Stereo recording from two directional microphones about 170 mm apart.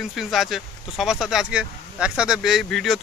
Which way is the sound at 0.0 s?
Centre (ahead or behind).